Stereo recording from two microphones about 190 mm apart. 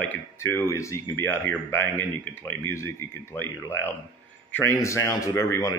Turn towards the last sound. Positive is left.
turn(degrees=20)  # may be behind; listen again after turning